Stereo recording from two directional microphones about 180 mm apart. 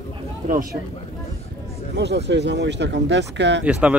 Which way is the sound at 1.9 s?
70° right (ahead or behind).